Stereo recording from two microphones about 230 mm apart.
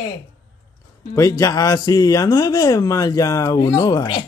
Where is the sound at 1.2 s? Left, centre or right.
Centre.